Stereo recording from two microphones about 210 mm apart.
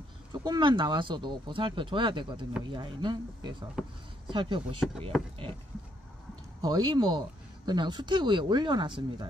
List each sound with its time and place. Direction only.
0.3 s speech: 20° right (ahead or behind)
3.8 s speech: 5° right (ahead or behind)
4.3 s speech: 25° right (ahead or behind)
6.6 s speech: 20° right (ahead or behind)